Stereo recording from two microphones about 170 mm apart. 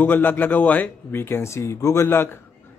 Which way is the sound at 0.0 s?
10° left (ahead or behind).